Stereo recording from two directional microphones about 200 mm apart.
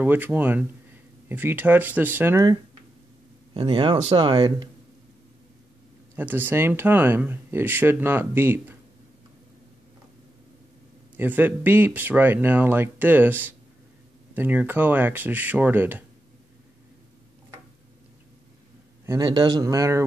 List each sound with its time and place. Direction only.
0.0 s speech: 10° right (ahead or behind)
6.1 s speech: 10° right (ahead or behind)
11.1 s speech: 10° right (ahead or behind)
19.0 s speech: 20° right (ahead or behind)